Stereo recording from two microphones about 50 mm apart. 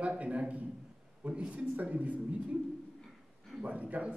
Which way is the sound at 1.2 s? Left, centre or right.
Right.